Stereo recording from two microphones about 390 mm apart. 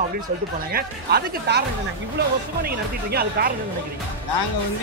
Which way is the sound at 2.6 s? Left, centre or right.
Right.